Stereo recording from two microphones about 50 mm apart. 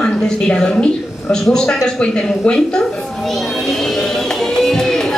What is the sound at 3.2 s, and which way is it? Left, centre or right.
Music, centre.